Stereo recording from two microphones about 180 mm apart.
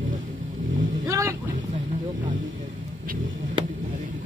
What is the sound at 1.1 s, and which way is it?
Vehicle, 15° right (ahead or behind).